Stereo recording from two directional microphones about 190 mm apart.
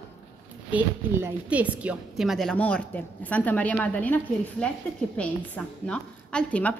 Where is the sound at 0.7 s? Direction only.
10° right (ahead or behind).